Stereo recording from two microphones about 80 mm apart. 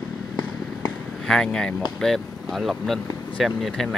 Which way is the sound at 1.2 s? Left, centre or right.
Centre.